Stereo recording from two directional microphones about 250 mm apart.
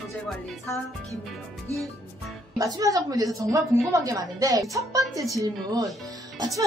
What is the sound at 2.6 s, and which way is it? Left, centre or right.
A woman's voice, centre.